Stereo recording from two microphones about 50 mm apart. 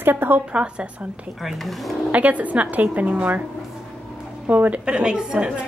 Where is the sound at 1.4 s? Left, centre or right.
Centre.